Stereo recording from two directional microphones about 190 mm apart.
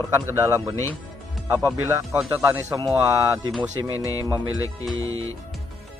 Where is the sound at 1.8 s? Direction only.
15° right (ahead or behind).